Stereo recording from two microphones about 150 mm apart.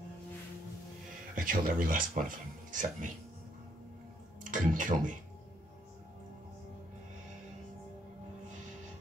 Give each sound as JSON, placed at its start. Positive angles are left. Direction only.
{"t": 1.3, "sound": "speech", "side_deg": -70}
{"t": 4.4, "sound": "speech", "side_deg": -60}